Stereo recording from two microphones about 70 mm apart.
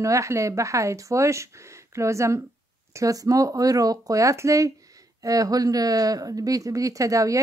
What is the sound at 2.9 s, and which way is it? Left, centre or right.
Speech, right.